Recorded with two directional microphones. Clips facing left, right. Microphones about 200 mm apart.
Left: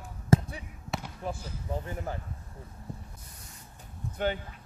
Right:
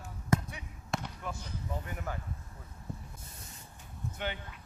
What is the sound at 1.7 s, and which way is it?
Speech, 30° left (ahead or behind).